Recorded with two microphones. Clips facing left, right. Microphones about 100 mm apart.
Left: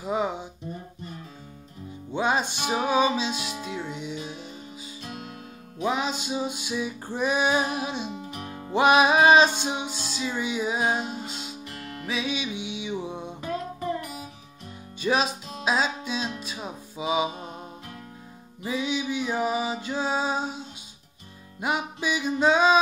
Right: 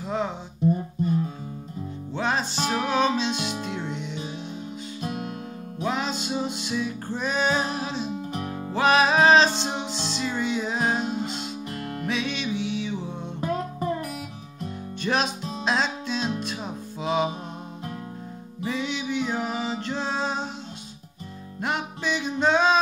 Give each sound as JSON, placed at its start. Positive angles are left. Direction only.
{"t": 0.0, "sound": "music", "side_deg": 10}
{"t": 2.1, "sound": "music", "side_deg": 10}
{"t": 5.8, "sound": "music", "side_deg": 10}
{"t": 8.3, "sound": "music", "side_deg": -35}
{"t": 8.7, "sound": "music", "side_deg": 15}
{"t": 11.7, "sound": "music", "side_deg": -45}
{"t": 12.1, "sound": "music", "side_deg": 5}
{"t": 15.0, "sound": "music", "side_deg": 5}
{"t": 18.6, "sound": "music", "side_deg": 10}
{"t": 21.5, "sound": "music", "side_deg": 10}